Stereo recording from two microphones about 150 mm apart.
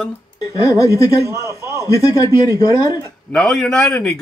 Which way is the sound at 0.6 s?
20° left (ahead or behind).